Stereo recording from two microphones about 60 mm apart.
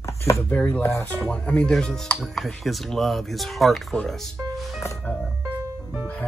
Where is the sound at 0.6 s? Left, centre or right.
Left; by 2.1 s centre.